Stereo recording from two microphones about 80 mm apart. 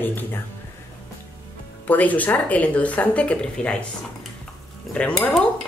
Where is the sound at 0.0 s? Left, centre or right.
Left.